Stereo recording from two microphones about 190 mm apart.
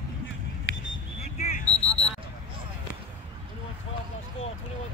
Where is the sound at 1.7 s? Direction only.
10° left (ahead or behind).